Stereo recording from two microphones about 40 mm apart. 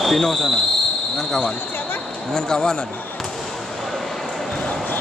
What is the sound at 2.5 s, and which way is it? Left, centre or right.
Speech, centre.